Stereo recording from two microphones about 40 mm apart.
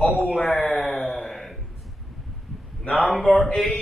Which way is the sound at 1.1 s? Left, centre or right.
Centre.